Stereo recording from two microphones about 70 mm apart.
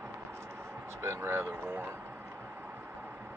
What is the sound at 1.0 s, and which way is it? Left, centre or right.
Speech, right.